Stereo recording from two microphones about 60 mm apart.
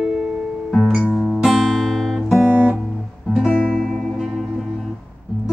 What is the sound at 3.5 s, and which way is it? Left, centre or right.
Music, centre.